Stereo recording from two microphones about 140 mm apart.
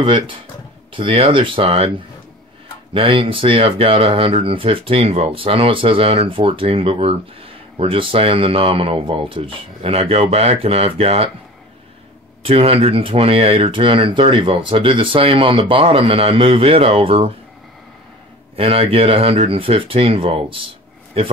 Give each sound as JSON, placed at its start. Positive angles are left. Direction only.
{"t": 0.0, "sound": "speech", "side_deg": -35}
{"t": 2.9, "sound": "speech", "side_deg": -40}
{"t": 12.4, "sound": "speech", "side_deg": -40}
{"t": 18.6, "sound": "speech", "side_deg": -40}